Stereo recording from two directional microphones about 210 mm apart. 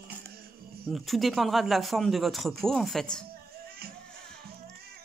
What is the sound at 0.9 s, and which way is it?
Speech, centre (ahead or behind).